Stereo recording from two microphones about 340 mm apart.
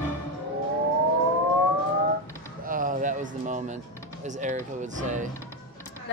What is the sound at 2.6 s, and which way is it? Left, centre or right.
Speech, right.